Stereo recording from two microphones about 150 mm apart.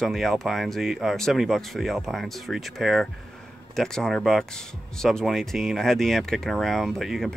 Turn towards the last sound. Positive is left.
turn(degrees=0)  # may be behind; listen again after turning